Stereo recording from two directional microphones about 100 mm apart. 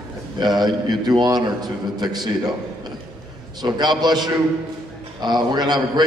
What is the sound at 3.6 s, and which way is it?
A man's voice, 45° right (ahead or behind).